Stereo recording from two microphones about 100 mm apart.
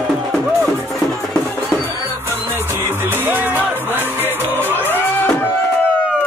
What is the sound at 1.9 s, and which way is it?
Music, 20° right (ahead or behind).